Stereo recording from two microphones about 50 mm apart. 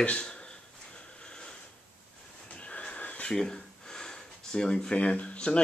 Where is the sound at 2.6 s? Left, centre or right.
Left.